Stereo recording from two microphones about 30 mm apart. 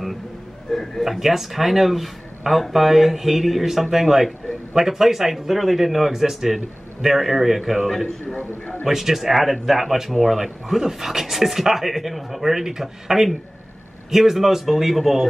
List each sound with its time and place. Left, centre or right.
0.7 s a man's voice: centre
1.0 s speech: centre
8.3 s a man's voice: left
8.8 s speech: centre